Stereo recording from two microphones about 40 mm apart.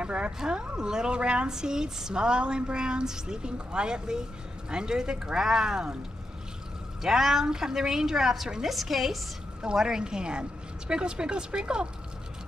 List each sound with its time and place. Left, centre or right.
0.0 s a woman's voice: right
7.0 s a woman's voice: centre
9.8 s speech: centre